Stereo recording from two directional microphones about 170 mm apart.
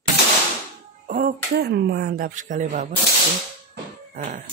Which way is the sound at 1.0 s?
55° right (ahead or behind).